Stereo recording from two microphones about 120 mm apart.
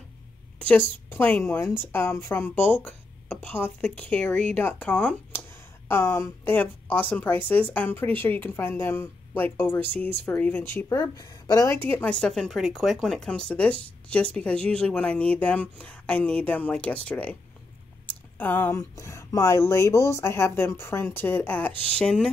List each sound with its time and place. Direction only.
0.6 s a woman's voice: 15° left (ahead or behind)
10.9 s a woman's voice: 30° left (ahead or behind); by 22.3 s 5° left (ahead or behind)